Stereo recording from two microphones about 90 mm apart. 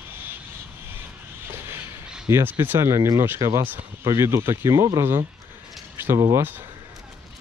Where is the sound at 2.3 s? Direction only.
25° right (ahead or behind).